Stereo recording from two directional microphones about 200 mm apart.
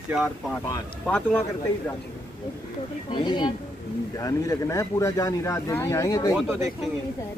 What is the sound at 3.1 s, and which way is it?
Speech, 20° left (ahead or behind).